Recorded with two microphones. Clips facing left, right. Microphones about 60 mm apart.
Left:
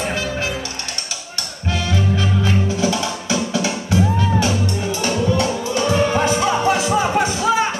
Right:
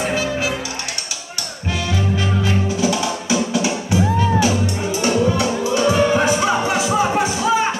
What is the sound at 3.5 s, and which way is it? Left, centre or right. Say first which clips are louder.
Music: right 1 dB; centre.